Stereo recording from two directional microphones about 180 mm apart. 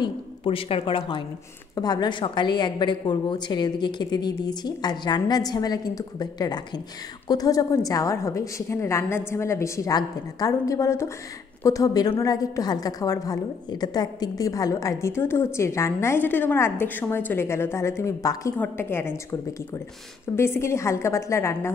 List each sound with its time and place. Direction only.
0.0 s a woman's voice: 30° left (ahead or behind); by 19.1 s 15° left (ahead or behind)
20.3 s a woman's voice: 15° left (ahead or behind)